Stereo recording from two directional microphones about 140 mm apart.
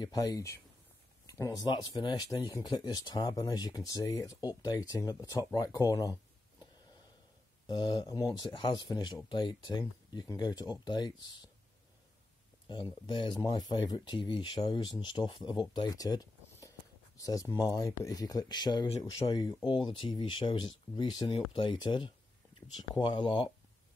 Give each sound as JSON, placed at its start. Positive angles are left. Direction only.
{"t": 0.0, "sound": "speech", "side_deg": 30}
{"t": 1.7, "sound": "speech", "side_deg": 35}
{"t": 7.6, "sound": "speech", "side_deg": 30}
{"t": 13.0, "sound": "speech", "side_deg": 35}